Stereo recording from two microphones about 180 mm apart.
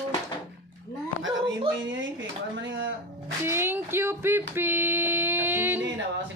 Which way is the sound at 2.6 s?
90° right.